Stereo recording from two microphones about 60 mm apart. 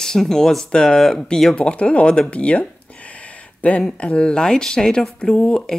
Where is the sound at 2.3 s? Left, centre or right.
Left.